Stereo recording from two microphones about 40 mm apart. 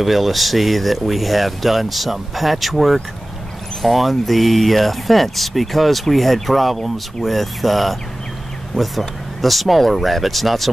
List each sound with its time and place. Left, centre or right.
0.0 s speech: centre